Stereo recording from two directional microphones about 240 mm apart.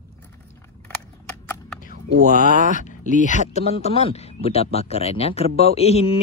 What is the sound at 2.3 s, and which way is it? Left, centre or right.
Speech, left.